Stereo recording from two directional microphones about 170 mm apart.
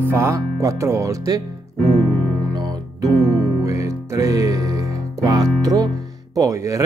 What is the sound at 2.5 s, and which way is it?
Music, 25° right (ahead or behind).